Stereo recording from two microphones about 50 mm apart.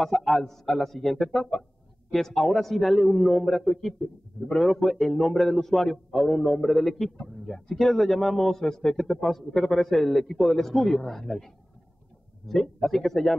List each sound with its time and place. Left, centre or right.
0.0 s a man's voice: centre